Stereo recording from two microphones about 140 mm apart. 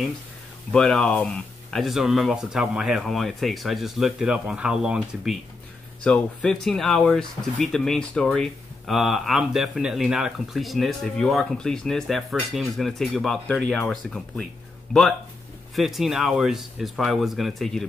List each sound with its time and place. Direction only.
0.7 s speech: 5° left (ahead or behind)
15.7 s speech: centre (ahead or behind)